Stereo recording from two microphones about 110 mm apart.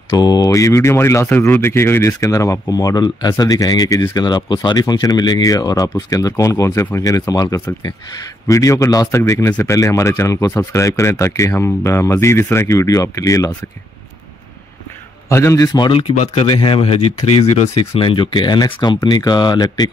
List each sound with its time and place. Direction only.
0.2 s speech: 35° left (ahead or behind)
15.2 s speech: 25° left (ahead or behind)
15.9 s speech: 55° left (ahead or behind)